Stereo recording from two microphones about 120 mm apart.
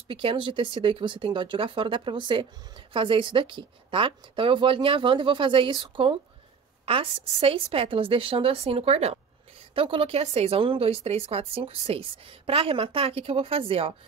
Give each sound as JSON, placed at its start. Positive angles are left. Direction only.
{"t": 0.1, "sound": "speech", "side_deg": -50}
{"t": 9.8, "sound": "speech", "side_deg": -50}